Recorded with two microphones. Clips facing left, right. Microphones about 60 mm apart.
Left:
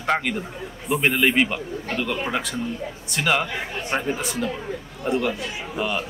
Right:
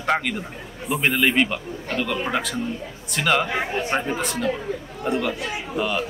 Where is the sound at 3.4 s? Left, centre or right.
Right.